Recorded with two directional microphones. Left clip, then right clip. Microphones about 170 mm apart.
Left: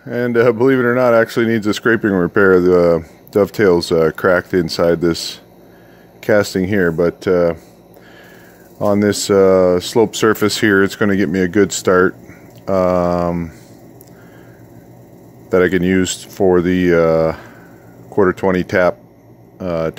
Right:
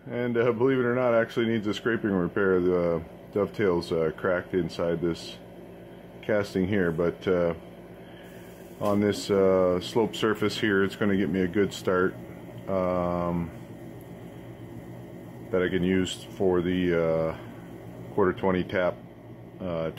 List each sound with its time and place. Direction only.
0.1 s speech: 65° left (ahead or behind)
8.7 s speech: 60° left (ahead or behind)
15.5 s speech: 65° left (ahead or behind)